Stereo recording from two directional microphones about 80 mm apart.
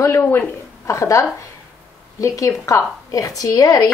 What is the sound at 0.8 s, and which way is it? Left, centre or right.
Speech, left.